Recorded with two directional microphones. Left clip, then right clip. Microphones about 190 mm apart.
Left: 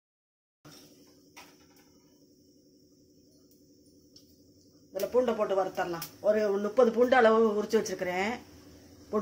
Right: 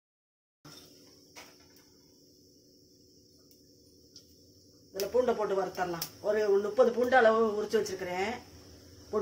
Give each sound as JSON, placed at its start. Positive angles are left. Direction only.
{"t": 5.1, "sound": "speech", "side_deg": 40}